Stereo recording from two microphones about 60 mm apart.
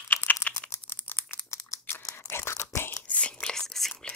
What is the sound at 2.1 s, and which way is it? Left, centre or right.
Chewing, left.